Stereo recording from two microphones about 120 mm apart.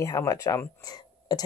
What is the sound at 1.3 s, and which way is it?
Speech, 35° left (ahead or behind).